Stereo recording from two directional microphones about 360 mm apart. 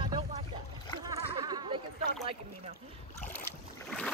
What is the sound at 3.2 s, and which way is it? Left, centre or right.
Boat, centre.